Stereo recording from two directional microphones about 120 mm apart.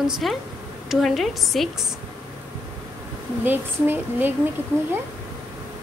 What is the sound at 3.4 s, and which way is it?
Speech, 15° right (ahead or behind).